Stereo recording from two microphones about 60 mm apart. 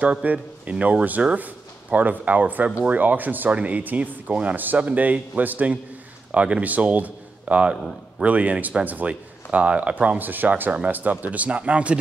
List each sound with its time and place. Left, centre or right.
0.0 s speech: right